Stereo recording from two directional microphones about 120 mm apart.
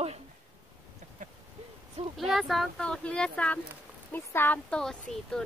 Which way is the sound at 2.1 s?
Centre (ahead or behind).